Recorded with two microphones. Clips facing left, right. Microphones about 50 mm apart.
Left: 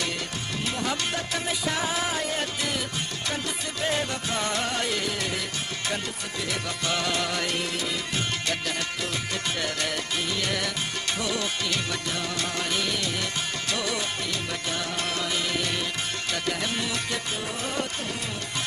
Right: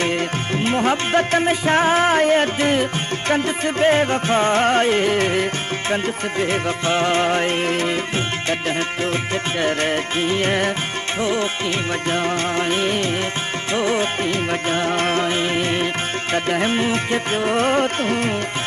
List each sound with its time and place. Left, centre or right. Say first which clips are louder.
0.7 s music: right 10 dB; right
9.6 s music: right 9 dB; right